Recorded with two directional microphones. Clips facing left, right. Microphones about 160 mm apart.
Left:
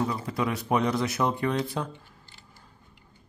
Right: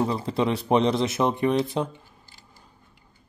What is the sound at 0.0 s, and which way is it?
Speech, 25° right (ahead or behind).